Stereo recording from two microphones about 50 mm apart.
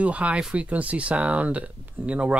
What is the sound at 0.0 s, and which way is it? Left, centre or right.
Speech, right.